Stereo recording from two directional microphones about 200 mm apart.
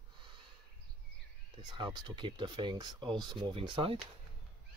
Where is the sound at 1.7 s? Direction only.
20° right (ahead or behind).